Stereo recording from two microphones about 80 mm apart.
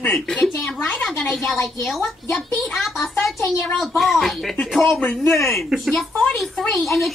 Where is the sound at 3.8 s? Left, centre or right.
Centre.